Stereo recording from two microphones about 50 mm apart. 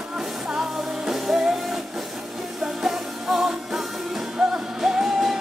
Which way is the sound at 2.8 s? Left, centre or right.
Centre.